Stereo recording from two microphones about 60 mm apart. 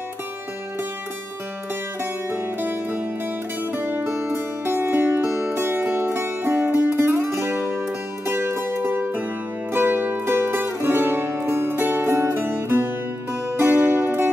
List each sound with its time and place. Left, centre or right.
2.3 s music: right